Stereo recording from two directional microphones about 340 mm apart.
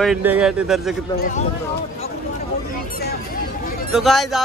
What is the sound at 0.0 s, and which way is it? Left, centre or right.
Speech, centre.